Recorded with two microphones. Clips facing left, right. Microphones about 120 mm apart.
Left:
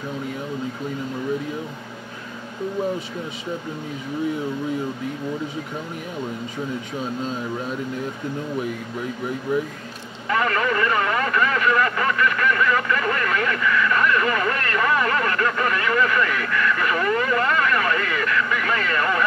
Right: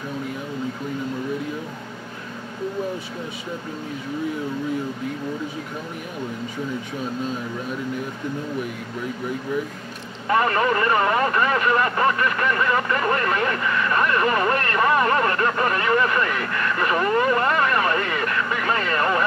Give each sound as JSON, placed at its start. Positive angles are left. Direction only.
{"t": 10.2, "sound": "speech", "side_deg": -35}